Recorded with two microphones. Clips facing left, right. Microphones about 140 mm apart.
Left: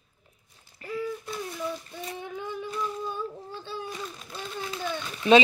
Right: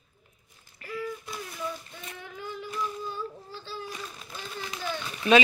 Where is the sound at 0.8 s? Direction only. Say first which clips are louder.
Left 3 dB; 30° left (ahead or behind).